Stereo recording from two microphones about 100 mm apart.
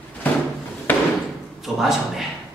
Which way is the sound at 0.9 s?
20° left (ahead or behind).